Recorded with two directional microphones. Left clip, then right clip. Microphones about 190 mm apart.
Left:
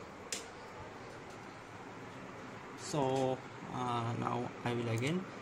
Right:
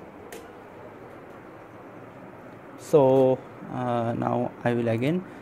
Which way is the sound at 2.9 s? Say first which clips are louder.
Right 16 dB; 40° right (ahead or behind).